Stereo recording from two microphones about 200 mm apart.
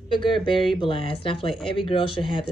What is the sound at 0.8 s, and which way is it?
Speech, 25° left (ahead or behind).